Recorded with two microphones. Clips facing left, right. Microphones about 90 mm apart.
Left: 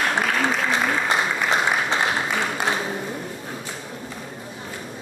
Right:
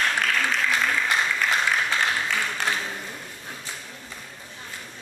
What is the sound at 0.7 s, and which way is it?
Applause, 25° left (ahead or behind).